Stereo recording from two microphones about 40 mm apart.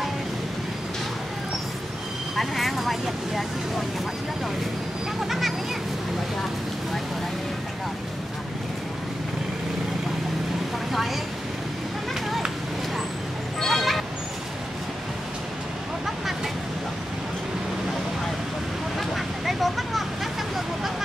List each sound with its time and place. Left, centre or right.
2.3 s speech: centre
5.2 s a sound: centre
13.6 s vehicle: centre
18.9 s vehicle: centre